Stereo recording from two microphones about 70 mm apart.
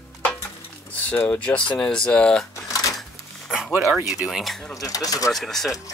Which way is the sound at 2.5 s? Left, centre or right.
Left.